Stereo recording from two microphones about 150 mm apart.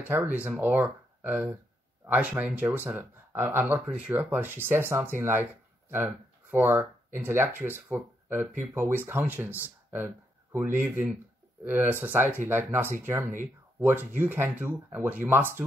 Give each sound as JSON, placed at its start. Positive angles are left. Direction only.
{"t": 0.0, "sound": "speech", "side_deg": -10}